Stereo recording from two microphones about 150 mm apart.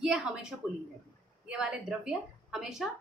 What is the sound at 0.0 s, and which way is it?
A woman's voice, 5° right (ahead or behind).